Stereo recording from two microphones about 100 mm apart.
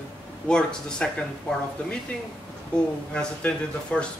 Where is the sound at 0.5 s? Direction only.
10° left (ahead or behind).